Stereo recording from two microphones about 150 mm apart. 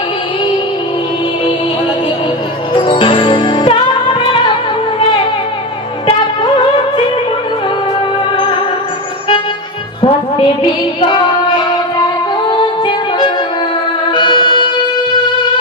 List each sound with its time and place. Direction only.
2.7 s music: 35° left (ahead or behind)
10.0 s child singing: 35° left (ahead or behind)
12.4 s music: 30° left (ahead or behind)